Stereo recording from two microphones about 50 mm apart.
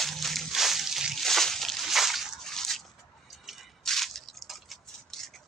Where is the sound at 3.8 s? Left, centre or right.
Centre.